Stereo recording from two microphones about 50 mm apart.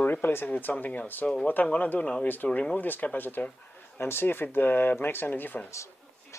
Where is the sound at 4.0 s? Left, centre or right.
Left.